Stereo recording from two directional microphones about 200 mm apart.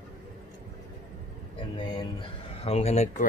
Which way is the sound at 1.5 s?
25° left (ahead or behind).